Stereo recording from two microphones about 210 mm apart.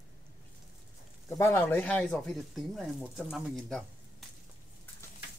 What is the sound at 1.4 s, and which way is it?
Speech, 10° left (ahead or behind).